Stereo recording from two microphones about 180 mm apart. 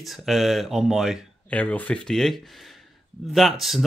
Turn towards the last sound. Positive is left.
turn(degrees=0)  # may be behind; listen again after turning